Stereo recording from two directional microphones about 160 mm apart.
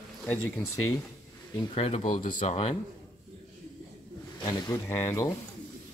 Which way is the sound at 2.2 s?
40° left (ahead or behind).